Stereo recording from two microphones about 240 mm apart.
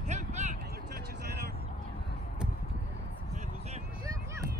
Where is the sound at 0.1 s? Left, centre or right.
Right.